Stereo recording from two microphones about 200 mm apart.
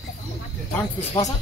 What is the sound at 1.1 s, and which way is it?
Speech, 15° left (ahead or behind).